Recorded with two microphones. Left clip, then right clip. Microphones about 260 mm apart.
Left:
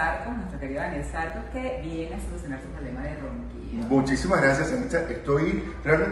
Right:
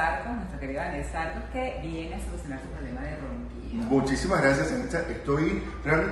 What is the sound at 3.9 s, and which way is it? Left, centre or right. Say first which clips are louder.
A man's voice: left 2 dB; centre.